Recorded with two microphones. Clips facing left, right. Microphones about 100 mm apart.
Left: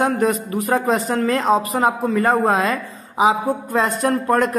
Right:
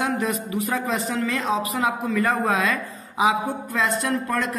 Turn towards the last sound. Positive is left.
turn(degrees=50)  # may be behind; listen again after turning